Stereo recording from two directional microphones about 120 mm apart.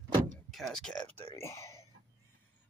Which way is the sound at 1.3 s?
25° left (ahead or behind).